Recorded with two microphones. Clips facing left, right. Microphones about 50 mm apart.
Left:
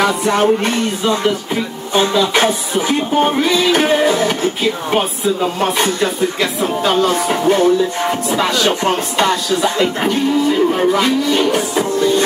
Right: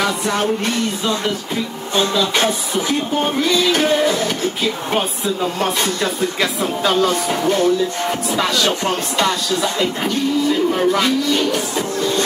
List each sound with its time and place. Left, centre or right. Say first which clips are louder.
0.0 s music: left 5 dB; left
2.0 s music: left 4 dB; centre
4.9 s speech: left 4 dB; centre
7.2 s music: left 3 dB; left
10.7 s music: left 2 dB; centre